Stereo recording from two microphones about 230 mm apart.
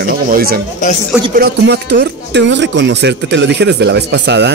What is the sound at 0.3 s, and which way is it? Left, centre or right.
Speech, right.